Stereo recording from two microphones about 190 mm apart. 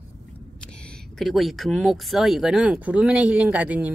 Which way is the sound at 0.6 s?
5° left (ahead or behind).